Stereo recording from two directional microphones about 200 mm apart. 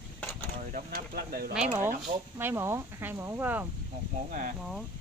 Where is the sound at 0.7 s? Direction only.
50° right (ahead or behind).